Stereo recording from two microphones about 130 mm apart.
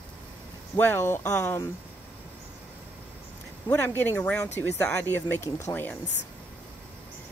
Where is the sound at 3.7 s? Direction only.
15° left (ahead or behind).